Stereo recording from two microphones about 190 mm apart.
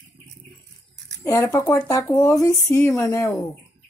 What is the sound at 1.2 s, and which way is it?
Speech, 15° left (ahead or behind).